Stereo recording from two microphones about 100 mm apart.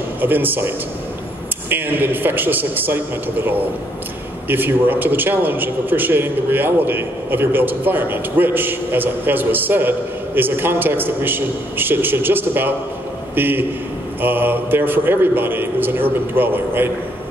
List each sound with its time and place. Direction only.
0.2 s a man's voice: 20° right (ahead or behind)